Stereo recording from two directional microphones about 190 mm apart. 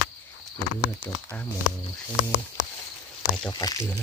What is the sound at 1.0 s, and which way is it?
Cricket, 10° left (ahead or behind).